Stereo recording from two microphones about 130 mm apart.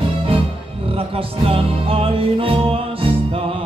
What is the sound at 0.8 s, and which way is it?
Music, 45° right (ahead or behind).